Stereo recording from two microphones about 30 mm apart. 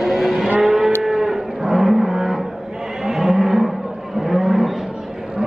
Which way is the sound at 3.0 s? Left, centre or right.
Centre.